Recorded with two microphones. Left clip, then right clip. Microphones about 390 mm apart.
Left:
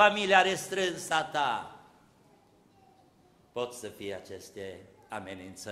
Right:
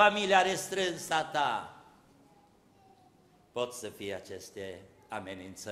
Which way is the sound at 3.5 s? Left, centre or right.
Centre.